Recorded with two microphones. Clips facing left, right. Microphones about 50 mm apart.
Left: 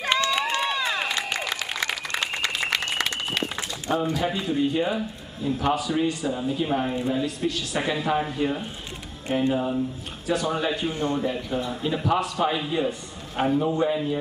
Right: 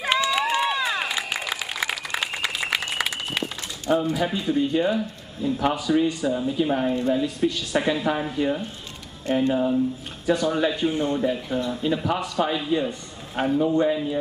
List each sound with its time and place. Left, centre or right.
0.0 s run: centre
3.9 s speech: centre
10.9 s speech: centre
11.1 s speech: centre